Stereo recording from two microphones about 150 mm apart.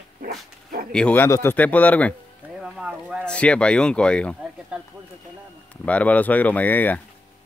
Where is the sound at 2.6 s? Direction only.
5° right (ahead or behind).